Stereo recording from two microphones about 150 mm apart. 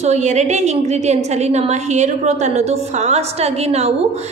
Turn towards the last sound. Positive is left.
turn(degrees=-45)  # may be behind; listen again after turning